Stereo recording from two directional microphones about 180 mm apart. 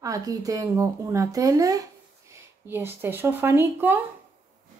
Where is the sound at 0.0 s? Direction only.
20° right (ahead or behind).